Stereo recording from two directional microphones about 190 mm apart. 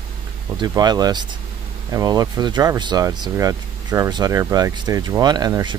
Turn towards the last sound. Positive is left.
turn(degrees=-20)  # may be behind; listen again after turning